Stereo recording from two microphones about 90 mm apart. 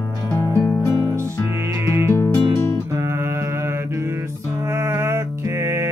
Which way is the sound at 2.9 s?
30° right (ahead or behind).